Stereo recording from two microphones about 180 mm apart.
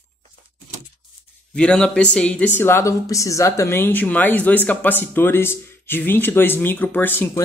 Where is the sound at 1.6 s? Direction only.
5° left (ahead or behind).